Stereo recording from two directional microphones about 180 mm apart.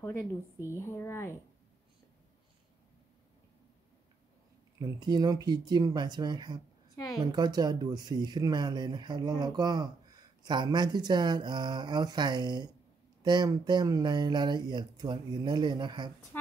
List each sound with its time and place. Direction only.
0.0 s speech: 15° left (ahead or behind)
4.7 s speech: 20° right (ahead or behind)